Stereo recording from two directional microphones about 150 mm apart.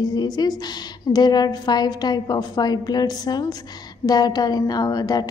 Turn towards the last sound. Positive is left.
turn(degrees=25)  # may be behind; listen again after turning